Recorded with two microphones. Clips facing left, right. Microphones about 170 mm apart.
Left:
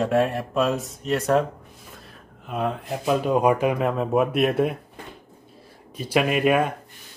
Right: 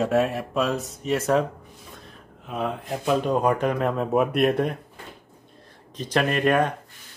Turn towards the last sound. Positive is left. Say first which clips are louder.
# left 1 dB
turn(degrees=5)  # may be behind; listen again after turning